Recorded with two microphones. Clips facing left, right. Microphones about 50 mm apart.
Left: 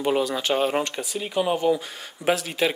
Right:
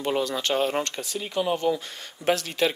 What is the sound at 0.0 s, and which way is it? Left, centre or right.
Speech, centre.